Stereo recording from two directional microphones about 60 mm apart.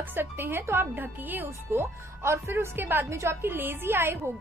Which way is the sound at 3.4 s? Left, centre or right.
Right.